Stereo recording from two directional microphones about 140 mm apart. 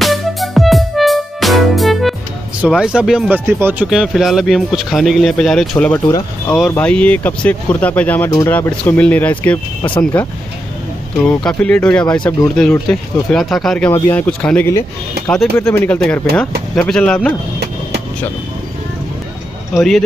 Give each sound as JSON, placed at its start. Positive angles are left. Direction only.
{"t": 0.0, "sound": "music", "side_deg": 0}
{"t": 2.7, "sound": "speech", "side_deg": -5}
{"t": 6.0, "sound": "speech", "side_deg": 25}
{"t": 6.7, "sound": "speech", "side_deg": 10}
{"t": 11.2, "sound": "speech", "side_deg": 5}
{"t": 19.7, "sound": "speech", "side_deg": 0}